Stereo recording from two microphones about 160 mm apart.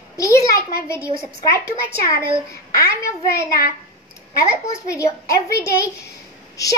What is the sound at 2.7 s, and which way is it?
Speech, 20° left (ahead or behind).